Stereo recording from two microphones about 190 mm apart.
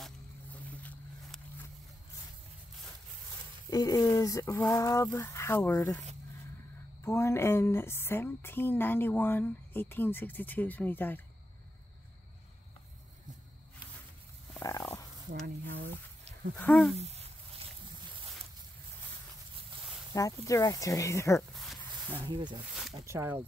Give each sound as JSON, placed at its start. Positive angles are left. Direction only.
{"t": 0.7, "sound": "a sound", "side_deg": 5}
{"t": 3.7, "sound": "a woman's voice", "side_deg": 20}
{"t": 7.1, "sound": "a woman's voice", "side_deg": 15}
{"t": 14.6, "sound": "a sound", "side_deg": 15}
{"t": 15.4, "sound": "speech", "side_deg": -65}
{"t": 16.5, "sound": "a woman's voice", "side_deg": 5}
{"t": 16.9, "sound": "a sound", "side_deg": -35}
{"t": 20.2, "sound": "a woman's voice", "side_deg": 15}
{"t": 22.2, "sound": "speech", "side_deg": -25}
{"t": 22.9, "sound": "speech", "side_deg": -15}